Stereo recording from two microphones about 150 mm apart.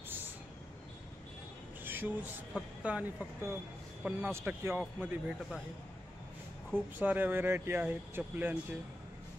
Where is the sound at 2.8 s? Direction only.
10° right (ahead or behind).